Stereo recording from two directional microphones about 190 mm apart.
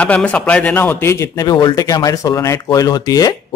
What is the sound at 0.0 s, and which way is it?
A man's voice, 5° left (ahead or behind).